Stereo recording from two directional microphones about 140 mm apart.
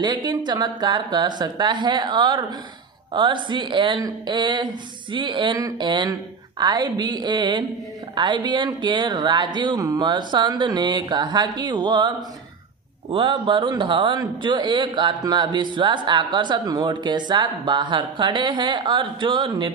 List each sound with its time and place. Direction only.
0.0 s a man's voice: 30° right (ahead or behind)
13.1 s a man's voice: 35° right (ahead or behind)